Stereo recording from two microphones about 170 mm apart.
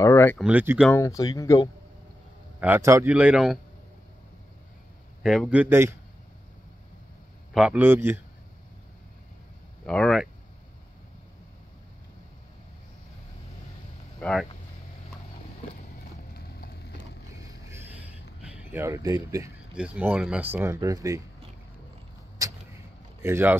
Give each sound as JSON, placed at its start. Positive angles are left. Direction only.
{"t": 0.0, "sound": "a sound", "side_deg": 15}
{"t": 0.4, "sound": "speech", "side_deg": -10}
{"t": 0.9, "sound": "speech", "side_deg": 20}
{"t": 2.6, "sound": "speech", "side_deg": -15}
{"t": 5.2, "sound": "speech", "side_deg": -5}
{"t": 7.5, "sound": "speech", "side_deg": -5}
{"t": 9.8, "sound": "speech", "side_deg": 5}
{"t": 14.2, "sound": "speech", "side_deg": 0}
{"t": 16.0, "sound": "a sound", "side_deg": 65}
{"t": 17.6, "sound": "a sound", "side_deg": -15}
{"t": 18.4, "sound": "speech", "side_deg": -10}
{"t": 19.7, "sound": "speech", "side_deg": -5}
{"t": 23.2, "sound": "speech", "side_deg": -15}